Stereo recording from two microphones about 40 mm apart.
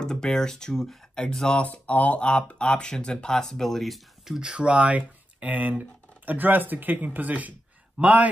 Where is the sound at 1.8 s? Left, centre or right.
Left.